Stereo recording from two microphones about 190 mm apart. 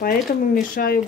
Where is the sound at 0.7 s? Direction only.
50° left (ahead or behind).